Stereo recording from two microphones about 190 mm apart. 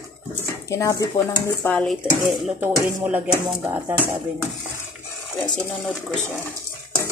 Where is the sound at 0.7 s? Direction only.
15° left (ahead or behind).